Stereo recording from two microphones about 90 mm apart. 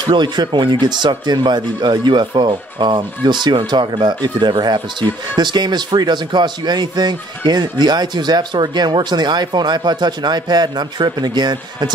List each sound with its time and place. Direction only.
0.0 s a man's voice: 55° right (ahead or behind)